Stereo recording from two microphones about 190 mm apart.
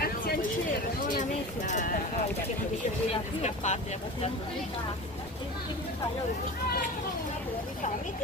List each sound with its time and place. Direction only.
0.0 s a sound: 50° left (ahead or behind)
1.7 s speech: 40° left (ahead or behind)
3.4 s speech: 35° left (ahead or behind)